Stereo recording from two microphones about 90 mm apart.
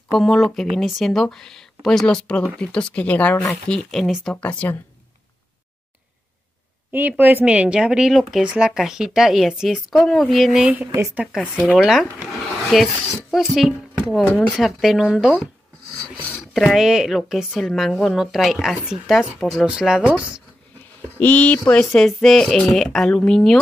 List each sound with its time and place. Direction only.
0.2 s speech: 5° left (ahead or behind)
3.6 s speech: 5° left (ahead or behind)
4.5 s speech: 20° left (ahead or behind)
6.9 s speech: 20° right (ahead or behind); by 10.7 s 5° right (ahead or behind)
11.9 s speech: centre (ahead or behind)
21.2 s speech: 20° left (ahead or behind)